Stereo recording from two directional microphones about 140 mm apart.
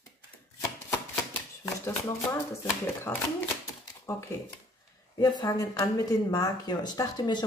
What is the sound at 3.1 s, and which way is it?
Speech, 10° left (ahead or behind).